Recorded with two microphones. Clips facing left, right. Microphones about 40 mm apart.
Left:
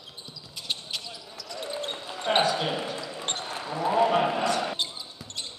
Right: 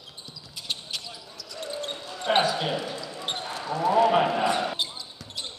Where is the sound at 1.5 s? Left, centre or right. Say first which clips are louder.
Even; centre.